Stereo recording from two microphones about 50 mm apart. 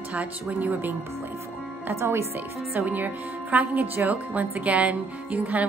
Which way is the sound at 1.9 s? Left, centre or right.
Right.